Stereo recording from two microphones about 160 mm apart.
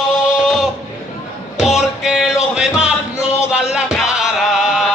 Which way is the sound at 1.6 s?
5° right (ahead or behind).